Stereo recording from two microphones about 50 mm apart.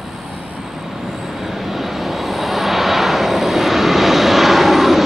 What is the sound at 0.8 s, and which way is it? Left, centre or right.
Vehicle, centre.